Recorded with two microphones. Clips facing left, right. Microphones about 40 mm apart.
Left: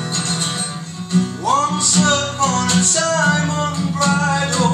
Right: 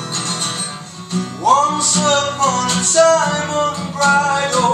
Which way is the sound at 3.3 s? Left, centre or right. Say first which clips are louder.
Right 2 dB; right.